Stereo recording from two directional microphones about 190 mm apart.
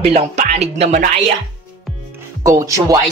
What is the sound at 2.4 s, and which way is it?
Speech, 20° right (ahead or behind).